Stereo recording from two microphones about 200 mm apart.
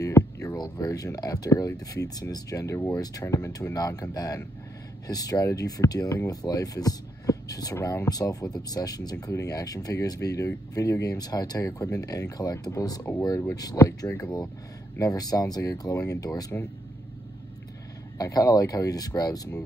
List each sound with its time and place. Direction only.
0.0 s speech: 15° left (ahead or behind)
18.1 s speech: 20° left (ahead or behind)